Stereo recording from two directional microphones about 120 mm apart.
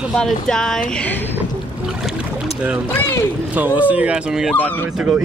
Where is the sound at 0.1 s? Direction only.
5° left (ahead or behind).